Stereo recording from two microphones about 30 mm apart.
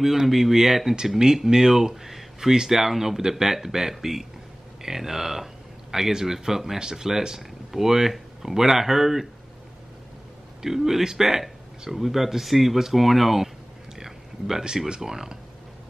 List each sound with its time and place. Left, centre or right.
0.0 s speech: centre
10.6 s speech: centre
13.9 s a sound: centre
15.0 s speech: right